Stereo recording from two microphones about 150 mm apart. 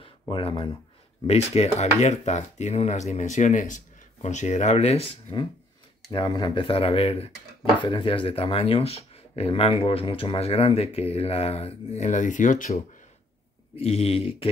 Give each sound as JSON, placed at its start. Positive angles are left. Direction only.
{"t": 0.3, "sound": "speech", "side_deg": 35}
{"t": 6.1, "sound": "speech", "side_deg": 30}
{"t": 13.7, "sound": "speech", "side_deg": 40}